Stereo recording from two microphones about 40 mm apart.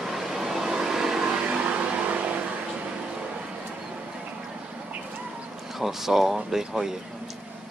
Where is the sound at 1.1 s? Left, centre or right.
Right.